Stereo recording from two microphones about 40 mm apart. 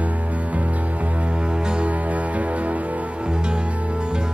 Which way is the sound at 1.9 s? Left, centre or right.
Right.